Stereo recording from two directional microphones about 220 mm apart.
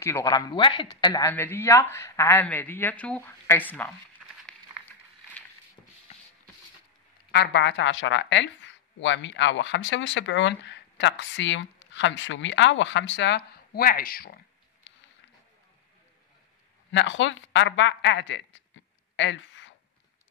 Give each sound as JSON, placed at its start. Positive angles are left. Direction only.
{"t": 0.0, "sound": "speech", "side_deg": 15}
{"t": 6.1, "sound": "rub", "side_deg": 30}
{"t": 7.2, "sound": "speech", "side_deg": 50}
{"t": 16.9, "sound": "speech", "side_deg": 60}